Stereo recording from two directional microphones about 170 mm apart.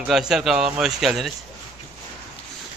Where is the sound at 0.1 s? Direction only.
5° right (ahead or behind).